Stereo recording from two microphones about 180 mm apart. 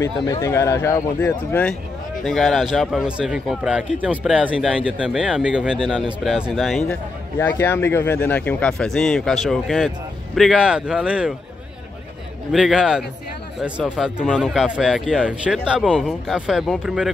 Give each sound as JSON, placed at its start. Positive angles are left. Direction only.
{"t": 0.0, "sound": "speech", "side_deg": 15}
{"t": 7.3, "sound": "speech", "side_deg": 15}
{"t": 12.5, "sound": "speech", "side_deg": -5}